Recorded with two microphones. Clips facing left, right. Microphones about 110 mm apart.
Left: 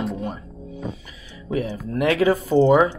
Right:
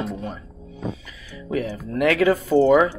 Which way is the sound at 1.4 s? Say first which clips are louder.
Even; 25° left (ahead or behind).